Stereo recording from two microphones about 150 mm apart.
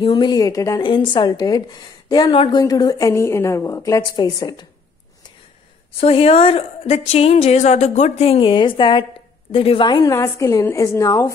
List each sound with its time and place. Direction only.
0.0 s speech: 30° left (ahead or behind)
5.9 s a woman's voice: 40° left (ahead or behind); by 11.3 s 20° left (ahead or behind)